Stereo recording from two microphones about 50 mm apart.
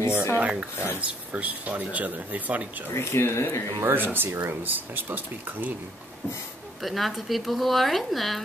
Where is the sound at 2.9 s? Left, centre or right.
Left.